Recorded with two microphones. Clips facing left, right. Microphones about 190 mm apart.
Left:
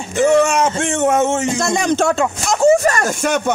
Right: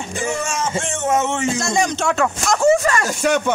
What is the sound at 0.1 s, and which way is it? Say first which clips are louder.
Speech: left 12 dB; 65° left (ahead or behind).